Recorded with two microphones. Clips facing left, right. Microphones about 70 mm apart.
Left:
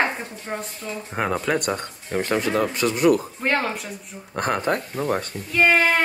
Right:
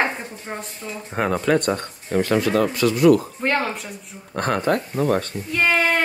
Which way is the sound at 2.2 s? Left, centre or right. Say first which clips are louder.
Right 3 dB; left.